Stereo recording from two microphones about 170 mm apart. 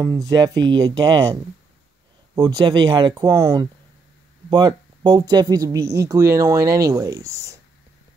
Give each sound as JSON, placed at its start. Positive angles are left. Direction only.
{"t": 0.0, "sound": "speech", "side_deg": -20}